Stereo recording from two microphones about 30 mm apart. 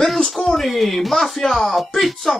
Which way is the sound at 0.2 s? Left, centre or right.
Left.